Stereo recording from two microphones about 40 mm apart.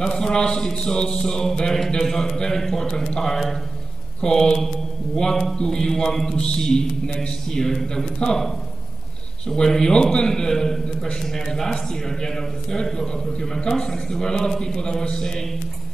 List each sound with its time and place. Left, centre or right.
0.0 s a man's voice: centre
9.5 s a man's voice: centre